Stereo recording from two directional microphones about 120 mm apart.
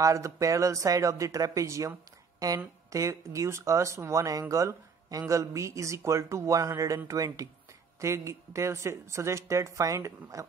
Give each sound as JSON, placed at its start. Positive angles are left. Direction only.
{"t": 0.0, "sound": "speech", "side_deg": -25}